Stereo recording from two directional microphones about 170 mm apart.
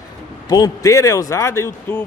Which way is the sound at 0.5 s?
20° left (ahead or behind).